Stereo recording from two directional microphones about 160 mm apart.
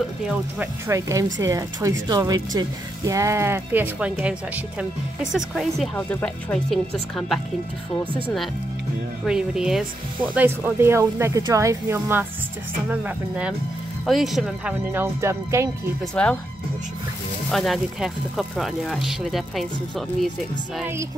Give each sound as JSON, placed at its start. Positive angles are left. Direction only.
{"t": 0.8, "sound": "speech", "side_deg": -20}
{"t": 9.2, "sound": "speech", "side_deg": -5}
{"t": 16.2, "sound": "speech", "side_deg": 5}
{"t": 17.5, "sound": "speech", "side_deg": 0}